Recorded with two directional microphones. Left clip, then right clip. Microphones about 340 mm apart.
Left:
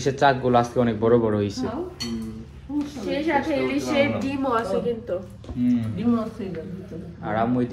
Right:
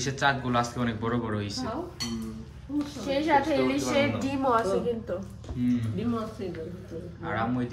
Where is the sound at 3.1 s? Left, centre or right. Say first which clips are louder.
Even; right.